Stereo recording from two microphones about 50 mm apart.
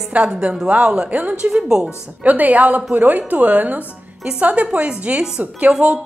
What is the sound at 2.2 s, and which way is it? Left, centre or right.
A woman's voice, right.